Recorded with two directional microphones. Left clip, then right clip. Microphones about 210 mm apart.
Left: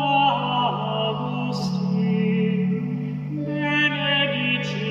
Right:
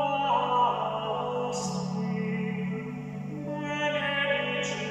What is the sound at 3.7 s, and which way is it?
Music, 45° left (ahead or behind).